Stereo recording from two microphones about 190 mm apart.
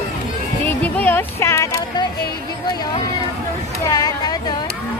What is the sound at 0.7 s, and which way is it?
Speech, 10° left (ahead or behind).